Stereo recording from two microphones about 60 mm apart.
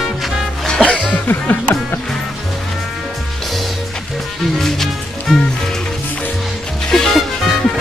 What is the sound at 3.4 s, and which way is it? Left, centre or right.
Music, centre.